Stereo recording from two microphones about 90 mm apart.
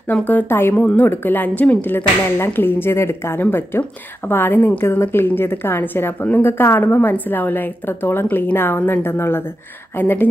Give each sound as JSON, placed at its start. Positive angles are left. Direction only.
{"t": 0.1, "sound": "a woman's voice", "side_deg": 20}
{"t": 0.7, "sound": "a woman's voice", "side_deg": 15}